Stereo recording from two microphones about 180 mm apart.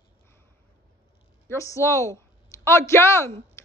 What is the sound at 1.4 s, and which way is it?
A woman's voice, 15° left (ahead or behind).